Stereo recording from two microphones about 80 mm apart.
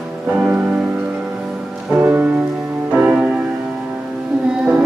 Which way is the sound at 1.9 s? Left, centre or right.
Right.